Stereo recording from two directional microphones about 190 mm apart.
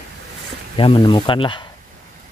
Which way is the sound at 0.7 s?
30° left (ahead or behind).